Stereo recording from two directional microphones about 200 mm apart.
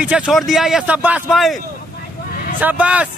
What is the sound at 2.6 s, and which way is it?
Speech, 10° right (ahead or behind).